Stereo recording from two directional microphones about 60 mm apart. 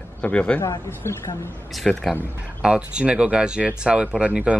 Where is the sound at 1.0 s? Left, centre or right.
Left.